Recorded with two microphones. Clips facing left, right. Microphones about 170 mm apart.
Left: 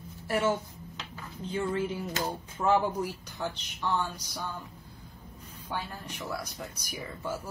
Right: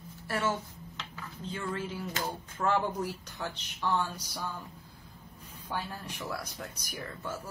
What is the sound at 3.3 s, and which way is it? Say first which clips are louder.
Speech: left 3 dB; centre (ahead or behind).